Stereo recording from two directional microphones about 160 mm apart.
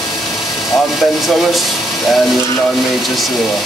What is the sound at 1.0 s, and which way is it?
Speech, centre (ahead or behind).